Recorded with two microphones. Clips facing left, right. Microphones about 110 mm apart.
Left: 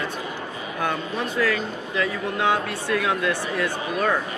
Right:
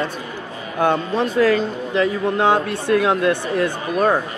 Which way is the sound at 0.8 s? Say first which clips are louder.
Right 8 dB; 30° right (ahead or behind).